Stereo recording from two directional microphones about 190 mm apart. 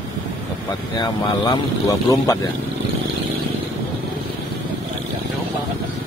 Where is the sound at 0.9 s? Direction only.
20° left (ahead or behind).